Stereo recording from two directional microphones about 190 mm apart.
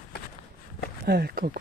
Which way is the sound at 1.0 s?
55° right (ahead or behind).